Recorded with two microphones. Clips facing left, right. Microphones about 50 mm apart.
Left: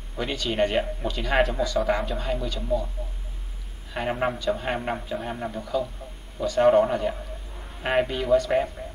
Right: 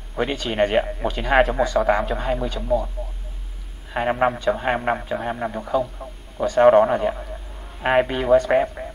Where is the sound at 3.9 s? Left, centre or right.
Right.